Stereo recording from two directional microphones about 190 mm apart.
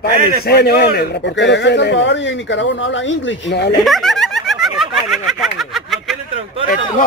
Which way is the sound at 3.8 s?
Centre (ahead or behind).